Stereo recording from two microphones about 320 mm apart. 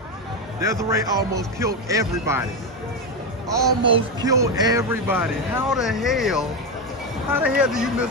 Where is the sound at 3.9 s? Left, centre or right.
Centre.